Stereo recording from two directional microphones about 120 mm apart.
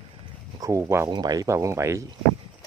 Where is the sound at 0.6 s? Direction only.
25° right (ahead or behind).